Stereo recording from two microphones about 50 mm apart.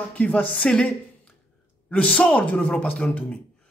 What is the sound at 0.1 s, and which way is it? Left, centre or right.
Speech, left.